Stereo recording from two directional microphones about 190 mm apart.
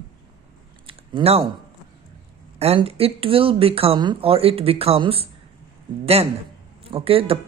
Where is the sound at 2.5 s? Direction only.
30° right (ahead or behind).